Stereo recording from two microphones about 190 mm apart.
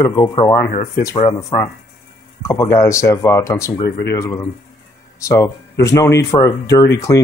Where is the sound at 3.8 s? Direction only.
55° left (ahead or behind).